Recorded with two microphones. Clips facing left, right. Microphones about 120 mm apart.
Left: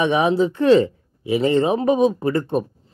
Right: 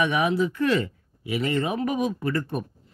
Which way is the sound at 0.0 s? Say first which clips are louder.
Left 5 dB; 25° left (ahead or behind).